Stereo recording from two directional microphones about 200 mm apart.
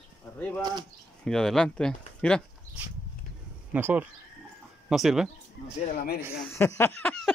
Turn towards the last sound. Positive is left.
turn(degrees=10)  # may be behind; listen again after turning